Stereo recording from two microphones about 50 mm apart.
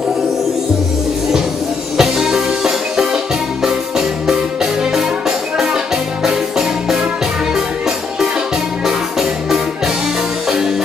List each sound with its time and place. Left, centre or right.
2.0 s music: centre